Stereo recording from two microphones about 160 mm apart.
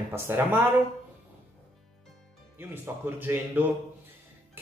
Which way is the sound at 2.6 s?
15° right (ahead or behind).